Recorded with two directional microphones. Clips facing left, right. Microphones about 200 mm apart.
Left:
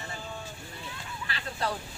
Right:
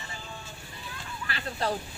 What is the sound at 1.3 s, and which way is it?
Vehicle, 30° right (ahead or behind).